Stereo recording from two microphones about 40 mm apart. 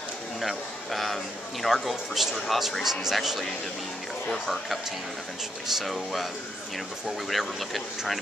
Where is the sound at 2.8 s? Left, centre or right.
Centre.